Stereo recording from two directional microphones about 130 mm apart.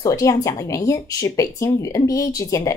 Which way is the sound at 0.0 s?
25° left (ahead or behind).